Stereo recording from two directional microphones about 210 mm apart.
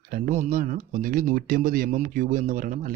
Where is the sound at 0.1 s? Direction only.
40° right (ahead or behind).